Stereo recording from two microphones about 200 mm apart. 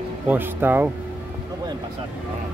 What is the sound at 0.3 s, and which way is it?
Speech, 10° right (ahead or behind).